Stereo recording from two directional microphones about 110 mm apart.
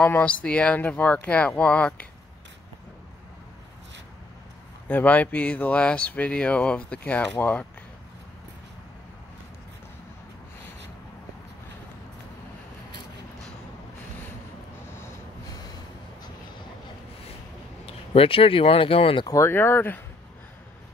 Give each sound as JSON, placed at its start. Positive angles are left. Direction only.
{"t": 0.0, "sound": "speech", "side_deg": 15}
{"t": 4.8, "sound": "speech", "side_deg": 15}
{"t": 15.4, "sound": "train", "side_deg": 35}
{"t": 17.8, "sound": "speech", "side_deg": 60}
{"t": 19.2, "sound": "speech", "side_deg": 25}